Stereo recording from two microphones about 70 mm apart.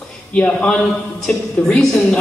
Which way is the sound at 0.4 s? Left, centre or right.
Centre.